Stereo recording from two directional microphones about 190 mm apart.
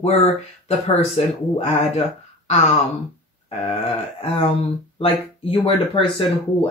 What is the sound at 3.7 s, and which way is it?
Speech, 30° left (ahead or behind).